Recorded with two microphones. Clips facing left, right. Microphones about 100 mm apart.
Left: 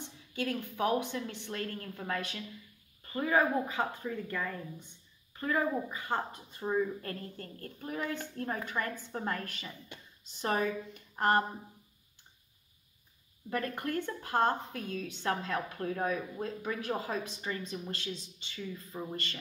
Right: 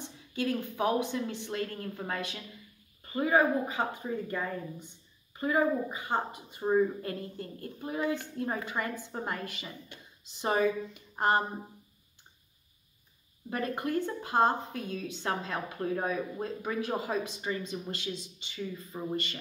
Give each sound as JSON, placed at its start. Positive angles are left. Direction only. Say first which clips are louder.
{"t": 0.4, "sound": "a woman's voice", "louder": "right 2 dB", "side_deg": -20}
{"t": 10.9, "sound": "speech", "louder": "right 1 dB", "side_deg": -20}
{"t": 13.5, "sound": "a woman's voice", "louder": "right 2 dB", "side_deg": -20}